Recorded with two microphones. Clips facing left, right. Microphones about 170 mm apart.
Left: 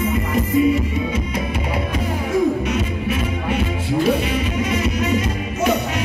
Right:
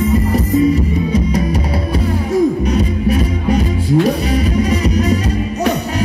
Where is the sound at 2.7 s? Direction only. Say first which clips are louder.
Right 7 dB; 40° right (ahead or behind).